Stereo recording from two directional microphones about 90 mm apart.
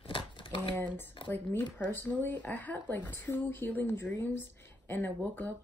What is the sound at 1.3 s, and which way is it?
Speech, 20° left (ahead or behind).